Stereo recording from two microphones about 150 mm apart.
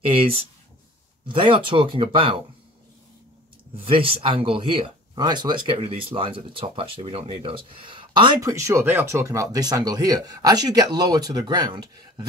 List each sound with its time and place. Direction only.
0.1 s speech: 40° right (ahead or behind)
3.8 s speech: 40° right (ahead or behind)
8.5 s speech: 20° right (ahead or behind)